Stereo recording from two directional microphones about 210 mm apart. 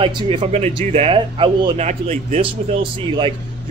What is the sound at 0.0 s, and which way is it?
Speech, 25° right (ahead or behind).